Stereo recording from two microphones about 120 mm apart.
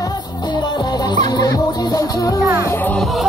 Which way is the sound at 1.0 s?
35° left (ahead or behind).